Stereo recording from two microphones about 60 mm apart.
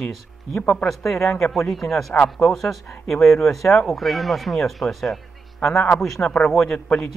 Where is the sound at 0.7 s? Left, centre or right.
Centre.